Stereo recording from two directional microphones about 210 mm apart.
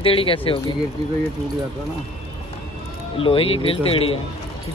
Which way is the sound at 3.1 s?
25° left (ahead or behind).